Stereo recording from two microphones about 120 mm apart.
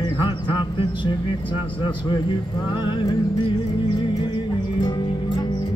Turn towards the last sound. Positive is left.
turn(degrees=40)  # may be behind; listen again after turning